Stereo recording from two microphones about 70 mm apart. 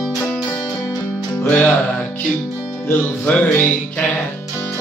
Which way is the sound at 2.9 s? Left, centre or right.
Left.